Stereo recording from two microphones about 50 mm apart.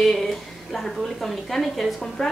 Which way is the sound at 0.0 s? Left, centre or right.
Centre.